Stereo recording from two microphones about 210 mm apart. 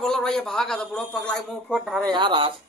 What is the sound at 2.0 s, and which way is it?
Speech, 20° right (ahead or behind).